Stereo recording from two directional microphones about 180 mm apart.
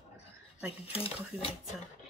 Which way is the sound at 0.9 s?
30° left (ahead or behind).